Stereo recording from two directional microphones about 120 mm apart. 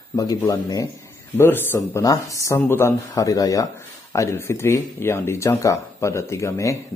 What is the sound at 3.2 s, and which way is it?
Speech, 30° left (ahead or behind).